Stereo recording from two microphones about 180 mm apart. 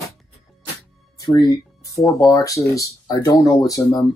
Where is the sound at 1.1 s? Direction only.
20° left (ahead or behind).